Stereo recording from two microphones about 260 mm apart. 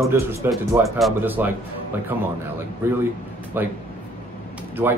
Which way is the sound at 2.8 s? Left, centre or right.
Centre.